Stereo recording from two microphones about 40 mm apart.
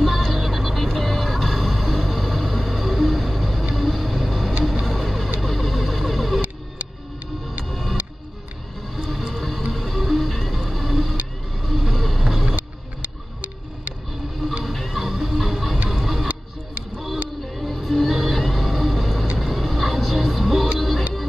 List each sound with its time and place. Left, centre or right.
0.0 s music: centre
4.8 s vehicle: centre
7.6 s music: centre
11.5 s vehicle: centre
12.5 s music: right
14.6 s music: centre
17.5 s vehicle: centre